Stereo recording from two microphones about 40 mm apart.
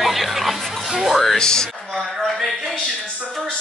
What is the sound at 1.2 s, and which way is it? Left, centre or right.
Speech, centre.